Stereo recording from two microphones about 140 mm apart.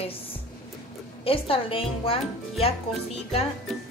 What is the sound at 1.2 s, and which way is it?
Speech, 40° left (ahead or behind).